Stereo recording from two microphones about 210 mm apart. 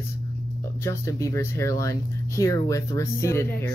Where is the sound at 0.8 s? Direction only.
15° left (ahead or behind).